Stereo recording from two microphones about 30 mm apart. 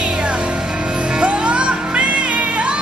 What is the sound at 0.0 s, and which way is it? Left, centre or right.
Music, right.